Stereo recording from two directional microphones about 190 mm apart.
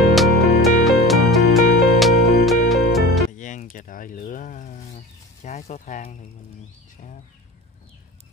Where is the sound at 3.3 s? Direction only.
40° left (ahead or behind).